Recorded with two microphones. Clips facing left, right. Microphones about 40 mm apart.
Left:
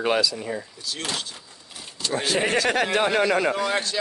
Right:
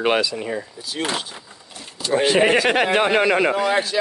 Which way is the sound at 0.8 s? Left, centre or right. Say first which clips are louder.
Right 5 dB; centre.